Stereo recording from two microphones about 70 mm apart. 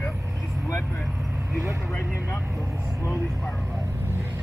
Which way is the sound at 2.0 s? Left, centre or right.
Centre.